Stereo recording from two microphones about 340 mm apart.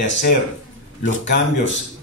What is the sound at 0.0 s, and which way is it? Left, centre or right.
Speech, left.